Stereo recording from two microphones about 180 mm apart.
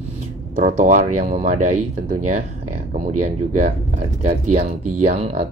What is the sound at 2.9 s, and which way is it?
Speech, 40° right (ahead or behind).